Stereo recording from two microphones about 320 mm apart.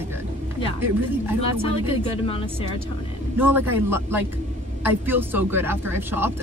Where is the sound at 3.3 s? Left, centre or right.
Centre.